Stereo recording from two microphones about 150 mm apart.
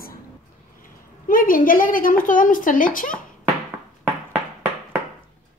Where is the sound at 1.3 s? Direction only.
65° left (ahead or behind).